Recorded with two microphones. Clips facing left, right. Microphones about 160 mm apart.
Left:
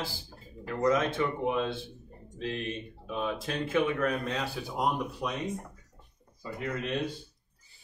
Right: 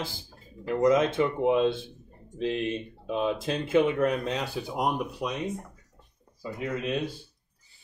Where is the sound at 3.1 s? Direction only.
20° right (ahead or behind).